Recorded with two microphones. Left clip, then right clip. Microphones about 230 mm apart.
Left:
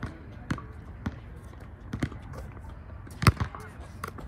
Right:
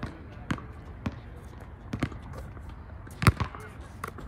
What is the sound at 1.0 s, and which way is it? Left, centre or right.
Basketball bounce, right.